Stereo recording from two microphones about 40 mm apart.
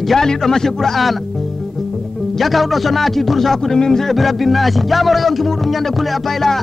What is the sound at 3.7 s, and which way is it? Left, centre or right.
Speech, centre.